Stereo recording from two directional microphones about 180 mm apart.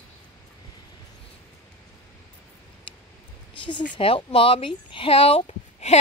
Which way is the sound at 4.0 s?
30° left (ahead or behind).